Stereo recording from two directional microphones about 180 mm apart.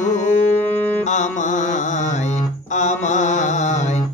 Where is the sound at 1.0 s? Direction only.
40° left (ahead or behind).